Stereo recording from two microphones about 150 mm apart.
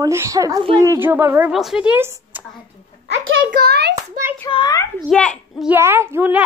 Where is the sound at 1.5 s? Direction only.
Centre (ahead or behind).